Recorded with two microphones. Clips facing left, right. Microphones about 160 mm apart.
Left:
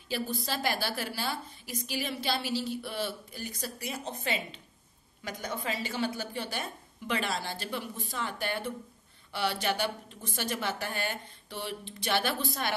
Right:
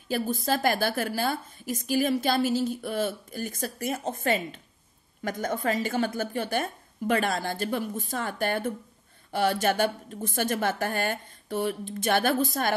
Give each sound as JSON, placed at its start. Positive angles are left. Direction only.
{"t": 0.1, "sound": "a woman's voice", "side_deg": -50}